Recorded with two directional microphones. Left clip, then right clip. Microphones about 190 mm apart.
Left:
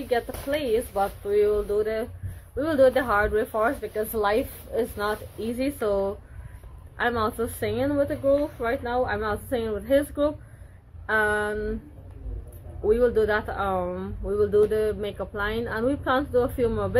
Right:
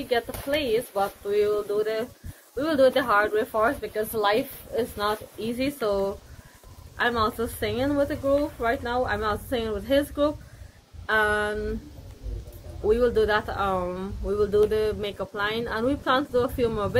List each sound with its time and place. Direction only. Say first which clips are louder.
0.1 s speech: even; 10° right (ahead or behind)
12.8 s speech: even; 5° right (ahead or behind)